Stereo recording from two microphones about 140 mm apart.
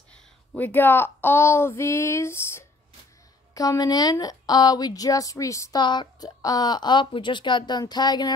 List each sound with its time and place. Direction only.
0.1 s speech: 10° left (ahead or behind); by 8.3 s 30° left (ahead or behind)